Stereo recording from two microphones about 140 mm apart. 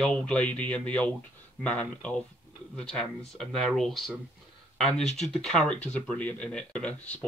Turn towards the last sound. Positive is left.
turn(degrees=10)  # may be behind; listen again after turning